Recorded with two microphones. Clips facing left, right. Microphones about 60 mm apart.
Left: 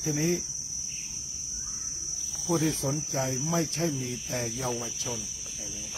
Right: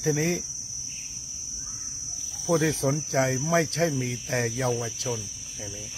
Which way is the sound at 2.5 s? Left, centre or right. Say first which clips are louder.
Right 4 dB; right.